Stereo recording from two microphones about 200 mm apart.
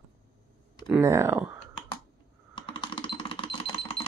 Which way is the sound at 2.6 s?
25° left (ahead or behind).